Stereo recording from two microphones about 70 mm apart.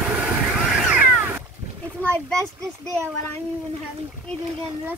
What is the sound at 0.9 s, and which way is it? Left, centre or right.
Cat, right.